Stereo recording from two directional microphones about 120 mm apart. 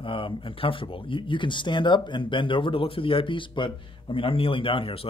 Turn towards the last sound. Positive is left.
turn(degrees=50)  # may be behind; listen again after turning